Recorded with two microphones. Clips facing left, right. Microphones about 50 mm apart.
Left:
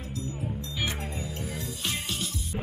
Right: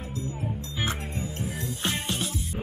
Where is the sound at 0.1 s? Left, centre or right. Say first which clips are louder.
Right 1 dB; right.